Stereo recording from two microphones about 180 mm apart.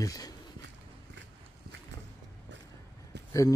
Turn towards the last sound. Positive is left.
turn(degrees=15)  # may be behind; listen again after turning